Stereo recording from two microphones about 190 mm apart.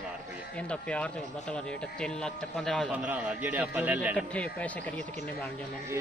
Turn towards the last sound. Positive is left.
turn(degrees=5)  # may be behind; listen again after turning